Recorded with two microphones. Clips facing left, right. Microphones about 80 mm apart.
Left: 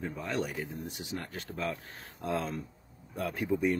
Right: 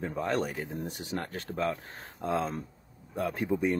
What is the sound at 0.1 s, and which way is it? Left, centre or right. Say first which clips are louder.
Speech: right 4 dB; right.